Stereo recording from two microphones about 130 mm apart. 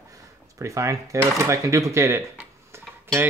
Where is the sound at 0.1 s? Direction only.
25° right (ahead or behind).